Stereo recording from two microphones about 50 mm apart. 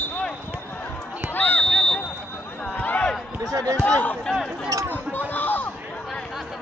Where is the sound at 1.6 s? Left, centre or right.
Centre.